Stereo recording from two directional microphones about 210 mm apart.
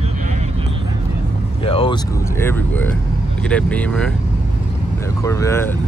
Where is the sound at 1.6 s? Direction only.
25° left (ahead or behind).